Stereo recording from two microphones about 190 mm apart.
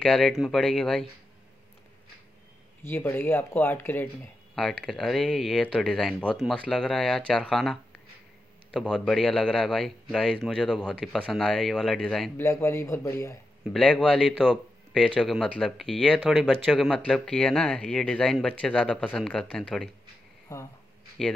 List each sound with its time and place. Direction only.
0.0 s speech: centre (ahead or behind)
2.8 s speech: 10° left (ahead or behind)
12.4 s speech: 15° left (ahead or behind)
13.7 s speech: 5° left (ahead or behind)
20.5 s speech: 20° left (ahead or behind)